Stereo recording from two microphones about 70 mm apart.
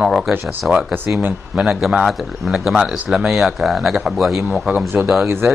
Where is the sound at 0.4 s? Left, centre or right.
Right.